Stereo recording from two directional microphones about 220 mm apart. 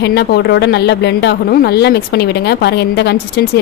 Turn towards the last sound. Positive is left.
turn(degrees=45)  # may be behind; listen again after turning